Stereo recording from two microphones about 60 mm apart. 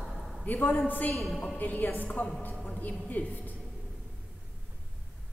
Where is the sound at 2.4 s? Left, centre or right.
Left.